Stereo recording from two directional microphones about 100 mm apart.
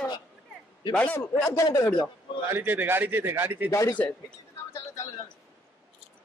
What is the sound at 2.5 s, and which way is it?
A man's voice, 20° right (ahead or behind).